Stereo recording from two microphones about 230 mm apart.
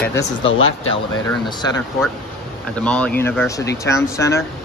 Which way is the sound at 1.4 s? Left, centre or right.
Centre.